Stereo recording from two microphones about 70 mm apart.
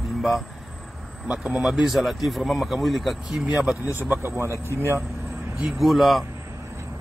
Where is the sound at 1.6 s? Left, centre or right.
Centre.